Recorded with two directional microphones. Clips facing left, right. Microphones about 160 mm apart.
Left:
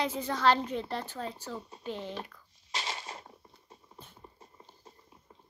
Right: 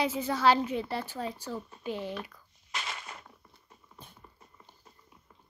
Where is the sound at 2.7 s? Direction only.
35° left (ahead or behind).